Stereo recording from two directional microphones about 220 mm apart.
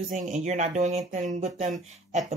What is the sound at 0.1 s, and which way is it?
Speech, 35° right (ahead or behind).